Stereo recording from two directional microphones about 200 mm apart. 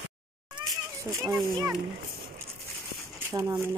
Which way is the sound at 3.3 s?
15° right (ahead or behind).